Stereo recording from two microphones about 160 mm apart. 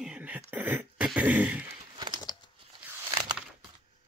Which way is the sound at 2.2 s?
25° left (ahead or behind).